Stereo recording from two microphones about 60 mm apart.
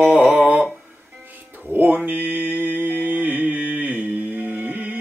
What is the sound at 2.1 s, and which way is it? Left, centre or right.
Mantra, right.